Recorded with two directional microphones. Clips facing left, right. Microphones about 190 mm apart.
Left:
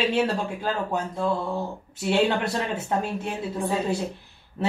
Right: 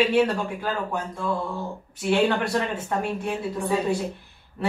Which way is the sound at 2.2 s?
25° left (ahead or behind).